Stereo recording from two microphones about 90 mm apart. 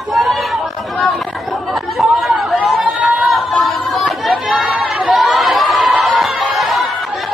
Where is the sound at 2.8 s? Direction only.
15° right (ahead or behind).